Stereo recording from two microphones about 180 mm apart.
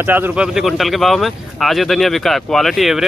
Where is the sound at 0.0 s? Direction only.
10° right (ahead or behind).